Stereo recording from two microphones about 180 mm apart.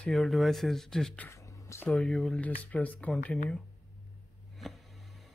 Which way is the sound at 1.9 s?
Centre (ahead or behind).